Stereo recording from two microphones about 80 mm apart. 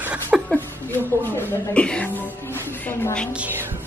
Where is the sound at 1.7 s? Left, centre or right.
Centre.